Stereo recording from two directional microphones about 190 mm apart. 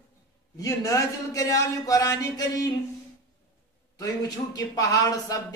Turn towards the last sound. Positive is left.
turn(degrees=15)  # may be behind; listen again after turning